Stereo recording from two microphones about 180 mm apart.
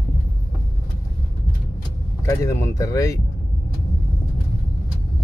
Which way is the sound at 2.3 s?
15° left (ahead or behind).